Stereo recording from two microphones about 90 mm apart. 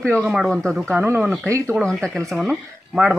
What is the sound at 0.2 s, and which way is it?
Speech, 5° right (ahead or behind).